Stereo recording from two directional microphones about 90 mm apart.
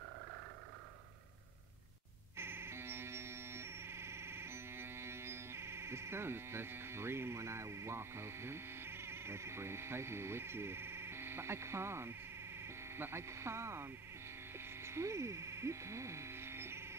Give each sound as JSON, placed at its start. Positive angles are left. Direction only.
{"t": 2.3, "sound": "synthesizer", "side_deg": -30}
{"t": 12.6, "sound": "speech", "side_deg": -30}
{"t": 14.8, "sound": "a sound", "side_deg": -30}